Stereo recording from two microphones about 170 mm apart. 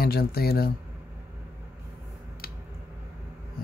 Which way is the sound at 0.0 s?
65° left (ahead or behind).